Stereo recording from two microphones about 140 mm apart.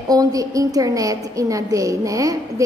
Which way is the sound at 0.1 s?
25° right (ahead or behind).